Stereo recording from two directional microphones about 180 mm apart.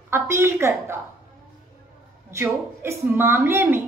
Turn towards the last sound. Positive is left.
turn(degrees=-15)  # may be behind; listen again after turning